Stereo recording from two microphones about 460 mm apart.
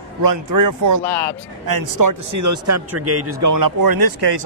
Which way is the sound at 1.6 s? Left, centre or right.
Right.